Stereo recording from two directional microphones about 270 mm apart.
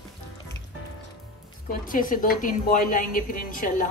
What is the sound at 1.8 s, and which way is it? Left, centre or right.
A woman's voice, left.